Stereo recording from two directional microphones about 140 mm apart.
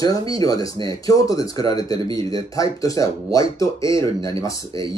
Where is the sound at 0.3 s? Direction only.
25° left (ahead or behind).